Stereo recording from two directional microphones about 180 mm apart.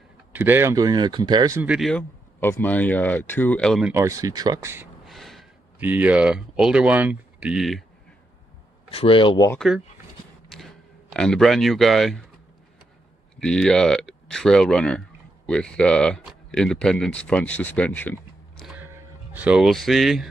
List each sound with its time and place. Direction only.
0.3 s speech: 10° right (ahead or behind)
1.6 s speech: 5° right (ahead or behind)
1.9 s speech: 10° left (ahead or behind)
3.8 s speech: 15° right (ahead or behind)
5.0 s a sound: centre (ahead or behind)
5.8 s speech: 10° right (ahead or behind)
8.9 s speech: 30° left (ahead or behind)
10.5 s a sound: centre (ahead or behind)
13.4 s speech: 5° left (ahead or behind)
18.7 s music: 10° right (ahead or behind)